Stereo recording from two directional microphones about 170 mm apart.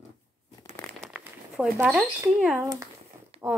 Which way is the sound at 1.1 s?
5° right (ahead or behind).